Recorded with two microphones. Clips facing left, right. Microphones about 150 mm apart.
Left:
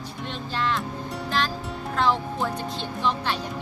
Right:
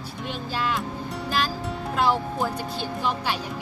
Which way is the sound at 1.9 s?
5° right (ahead or behind).